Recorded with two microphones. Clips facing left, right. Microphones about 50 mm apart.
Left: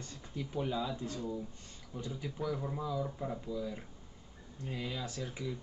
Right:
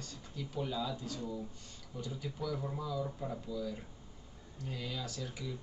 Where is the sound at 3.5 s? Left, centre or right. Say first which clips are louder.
Left 1 dB; left.